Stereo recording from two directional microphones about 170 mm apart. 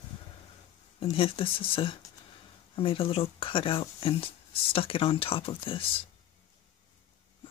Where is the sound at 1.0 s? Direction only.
35° left (ahead or behind).